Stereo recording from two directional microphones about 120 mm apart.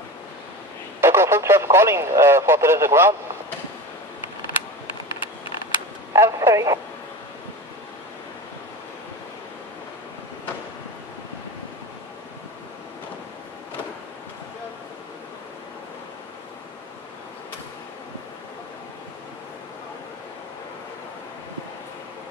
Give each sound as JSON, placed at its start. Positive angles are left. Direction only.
{"t": 1.0, "sound": "radio", "side_deg": -20}
{"t": 6.1, "sound": "speech", "side_deg": -25}